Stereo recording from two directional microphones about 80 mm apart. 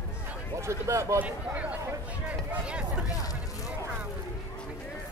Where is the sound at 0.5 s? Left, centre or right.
Right.